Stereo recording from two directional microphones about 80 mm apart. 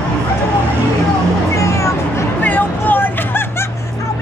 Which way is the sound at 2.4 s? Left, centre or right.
Left.